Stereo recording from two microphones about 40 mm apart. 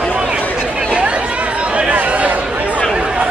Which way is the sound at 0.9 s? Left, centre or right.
Right.